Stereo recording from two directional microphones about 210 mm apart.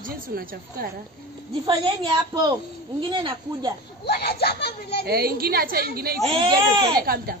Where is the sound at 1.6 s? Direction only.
25° right (ahead or behind).